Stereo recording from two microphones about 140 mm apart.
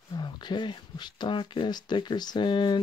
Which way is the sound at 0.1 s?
30° left (ahead or behind).